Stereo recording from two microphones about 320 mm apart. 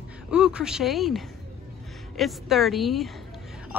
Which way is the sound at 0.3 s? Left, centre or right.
Centre.